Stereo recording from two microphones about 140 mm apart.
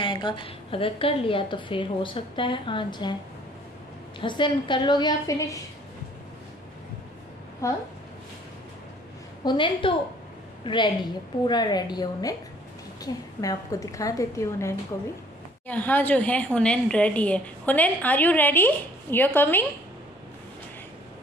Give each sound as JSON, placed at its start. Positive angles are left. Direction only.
{"t": 0.0, "sound": "a woman's voice", "side_deg": 35}
{"t": 4.2, "sound": "a woman's voice", "side_deg": 35}
{"t": 7.6, "sound": "a woman's voice", "side_deg": 20}
{"t": 9.4, "sound": "a woman's voice", "side_deg": 35}